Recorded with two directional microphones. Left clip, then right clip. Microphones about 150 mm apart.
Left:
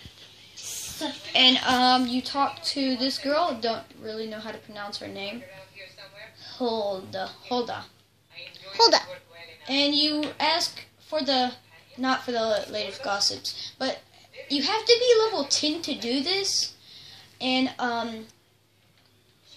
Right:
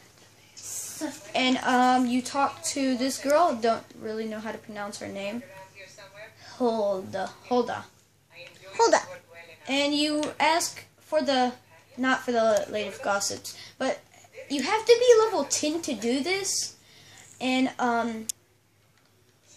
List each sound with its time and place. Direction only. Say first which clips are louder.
1.3 s a woman's voice: left 4 dB; 45° right (ahead or behind)
6.6 s a woman's voice: right 2 dB; 50° right (ahead or behind)
8.7 s babbling: left 2 dB; centre (ahead or behind)
9.7 s a woman's voice: left 2 dB; 50° right (ahead or behind)